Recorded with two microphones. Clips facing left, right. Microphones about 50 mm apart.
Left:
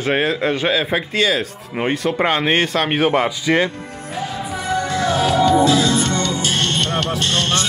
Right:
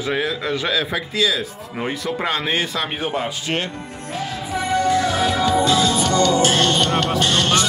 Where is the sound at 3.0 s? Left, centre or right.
Left.